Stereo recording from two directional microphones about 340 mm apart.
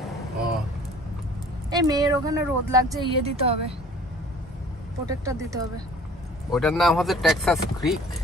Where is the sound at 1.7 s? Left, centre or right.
Centre.